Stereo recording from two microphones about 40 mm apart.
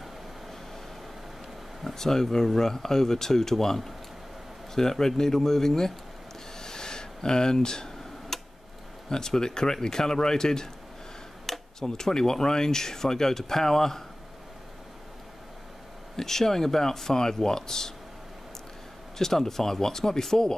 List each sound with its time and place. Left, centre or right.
2.0 s speech: centre
6.6 s a sound: centre
9.1 s speech: centre
16.2 s speech: centre
19.1 s speech: centre